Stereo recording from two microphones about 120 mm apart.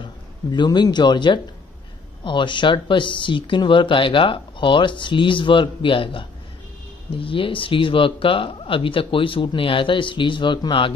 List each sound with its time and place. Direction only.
0.0 s speech: 40° left (ahead or behind)